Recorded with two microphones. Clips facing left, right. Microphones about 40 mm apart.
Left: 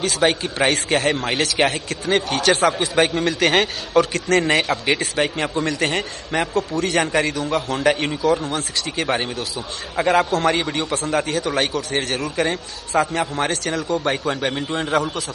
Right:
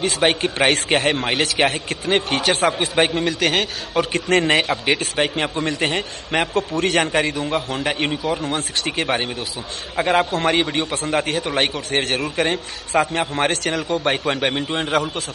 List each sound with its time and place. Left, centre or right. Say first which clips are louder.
0.0 s a man's voice: even; right
0.4 s a man's voice: right 2 dB; right
3.3 s a man's voice: left 2 dB; centre
4.1 s a man's voice: right 1 dB; right
5.0 s a man's voice: even; right
5.6 s a man's voice: left 2 dB; centre
6.5 s a man's voice: even; right
7.2 s a man's voice: even; right
7.7 s a man's voice: left 3 dB; centre; by 15.2 s right